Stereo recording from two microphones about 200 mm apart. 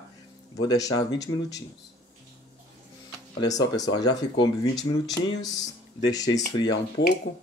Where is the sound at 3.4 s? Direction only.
20° left (ahead or behind).